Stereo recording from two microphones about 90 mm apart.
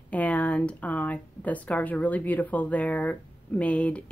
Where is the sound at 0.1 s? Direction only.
15° left (ahead or behind).